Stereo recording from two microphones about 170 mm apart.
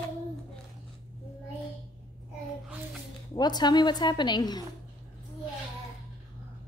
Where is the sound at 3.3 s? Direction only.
25° left (ahead or behind).